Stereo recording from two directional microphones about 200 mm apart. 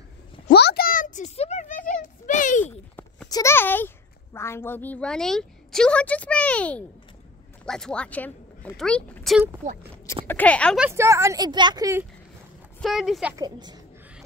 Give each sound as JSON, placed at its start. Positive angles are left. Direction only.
{"t": 0.5, "sound": "a sound", "side_deg": 55}
{"t": 2.6, "sound": "a sound", "side_deg": 10}
{"t": 3.3, "sound": "a child's voice", "side_deg": 15}
{"t": 10.8, "sound": "a woman's voice", "side_deg": -15}
{"t": 12.8, "sound": "speech", "side_deg": 0}
{"t": 13.4, "sound": "a woman's voice", "side_deg": -20}